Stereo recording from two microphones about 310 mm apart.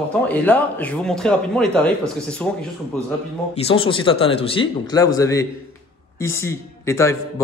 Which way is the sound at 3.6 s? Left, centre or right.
Centre.